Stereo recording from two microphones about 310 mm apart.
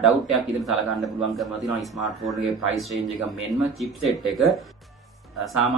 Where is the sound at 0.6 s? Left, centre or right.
Centre.